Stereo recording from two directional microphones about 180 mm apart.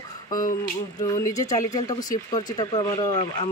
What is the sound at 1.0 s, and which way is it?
Speech, 15° left (ahead or behind).